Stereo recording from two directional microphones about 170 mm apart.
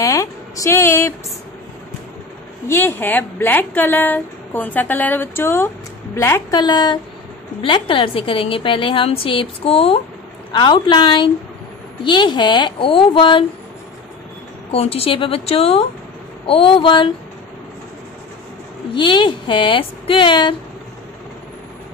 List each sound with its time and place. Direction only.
0.0 s a woman's voice: 20° left (ahead or behind)
2.7 s a woman's voice: 10° left (ahead or behind); by 13.5 s 30° left (ahead or behind)
14.7 s a woman's voice: 35° left (ahead or behind)
18.9 s speech: 30° left (ahead or behind)